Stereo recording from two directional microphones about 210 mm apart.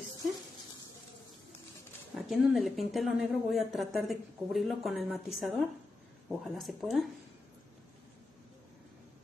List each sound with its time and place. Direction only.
2.1 s a woman's voice: centre (ahead or behind)